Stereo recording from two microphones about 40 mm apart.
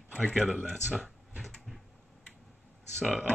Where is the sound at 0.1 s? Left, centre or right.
Centre.